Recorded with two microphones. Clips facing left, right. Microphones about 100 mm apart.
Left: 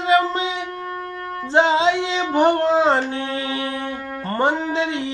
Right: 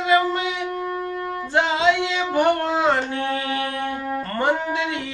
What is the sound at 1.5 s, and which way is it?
Music, 30° left (ahead or behind).